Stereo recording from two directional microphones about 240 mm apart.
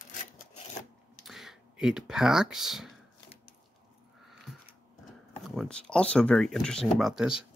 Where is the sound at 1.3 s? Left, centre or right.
Centre.